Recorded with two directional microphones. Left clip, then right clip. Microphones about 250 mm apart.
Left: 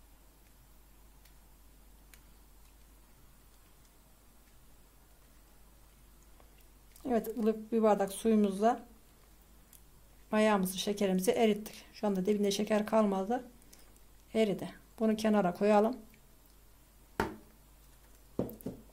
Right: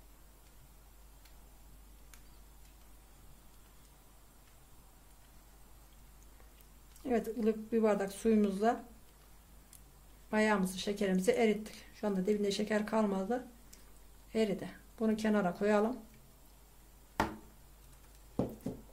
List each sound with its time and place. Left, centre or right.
7.0 s speech: left
10.3 s speech: left